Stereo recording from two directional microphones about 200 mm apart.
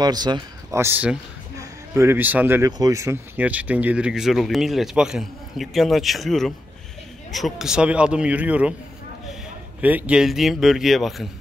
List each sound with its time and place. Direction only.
0.0 s speech: 20° right (ahead or behind); by 11.2 s centre (ahead or behind)